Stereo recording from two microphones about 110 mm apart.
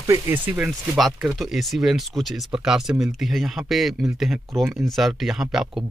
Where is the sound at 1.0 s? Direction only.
Centre (ahead or behind).